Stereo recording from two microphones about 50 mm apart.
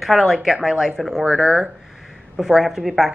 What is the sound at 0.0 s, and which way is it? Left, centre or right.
A woman's voice, centre.